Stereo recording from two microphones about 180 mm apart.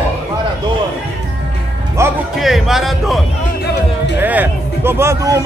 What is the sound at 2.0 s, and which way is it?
Music, 15° right (ahead or behind).